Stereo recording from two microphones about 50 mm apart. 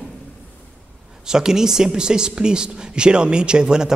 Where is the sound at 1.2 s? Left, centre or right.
Centre.